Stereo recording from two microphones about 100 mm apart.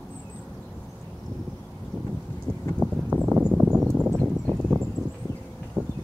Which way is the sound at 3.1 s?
20° right (ahead or behind).